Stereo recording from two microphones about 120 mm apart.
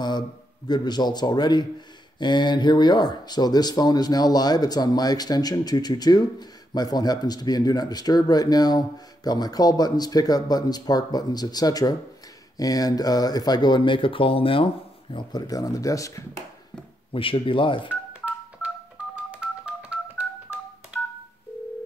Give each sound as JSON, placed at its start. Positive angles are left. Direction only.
{"t": 0.7, "sound": "speech", "side_deg": 35}
{"t": 15.4, "sound": "speech", "side_deg": 30}
{"t": 17.1, "sound": "speech", "side_deg": 45}
{"t": 17.8, "sound": "telephone dialing", "side_deg": -10}